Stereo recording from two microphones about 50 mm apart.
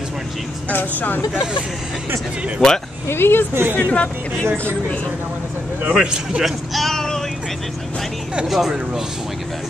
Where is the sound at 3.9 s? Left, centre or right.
Left.